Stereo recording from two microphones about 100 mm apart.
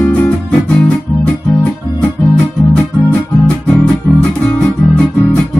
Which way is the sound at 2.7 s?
10° left (ahead or behind).